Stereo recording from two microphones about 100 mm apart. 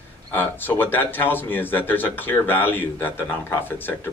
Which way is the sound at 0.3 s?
20° left (ahead or behind).